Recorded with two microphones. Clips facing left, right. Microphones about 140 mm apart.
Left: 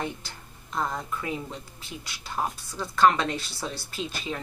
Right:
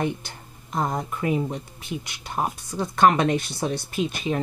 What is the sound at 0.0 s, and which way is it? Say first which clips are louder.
Speech: right 6 dB; 20° right (ahead or behind).